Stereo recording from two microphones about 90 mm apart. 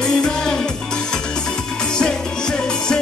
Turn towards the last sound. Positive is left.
turn(degrees=10)  # may be behind; listen again after turning